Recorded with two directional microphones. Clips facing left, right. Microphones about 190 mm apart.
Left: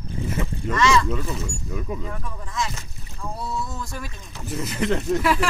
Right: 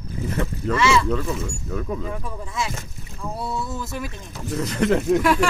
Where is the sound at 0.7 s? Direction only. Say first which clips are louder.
Right 1 dB; 5° right (ahead or behind).